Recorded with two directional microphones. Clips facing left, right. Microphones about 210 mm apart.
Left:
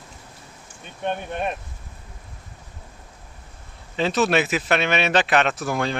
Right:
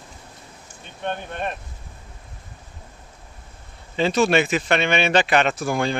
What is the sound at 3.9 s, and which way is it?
Speech, centre (ahead or behind).